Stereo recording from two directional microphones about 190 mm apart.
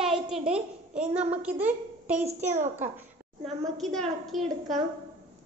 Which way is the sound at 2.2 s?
35° right (ahead or behind).